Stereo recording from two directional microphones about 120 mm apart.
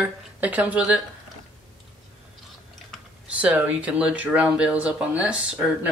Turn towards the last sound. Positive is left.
turn(degrees=-10)  # may be behind; listen again after turning